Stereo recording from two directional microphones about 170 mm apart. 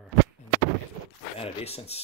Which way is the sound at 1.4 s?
35° left (ahead or behind).